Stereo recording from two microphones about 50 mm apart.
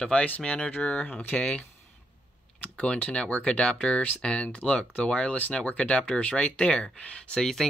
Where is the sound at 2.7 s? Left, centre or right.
Left.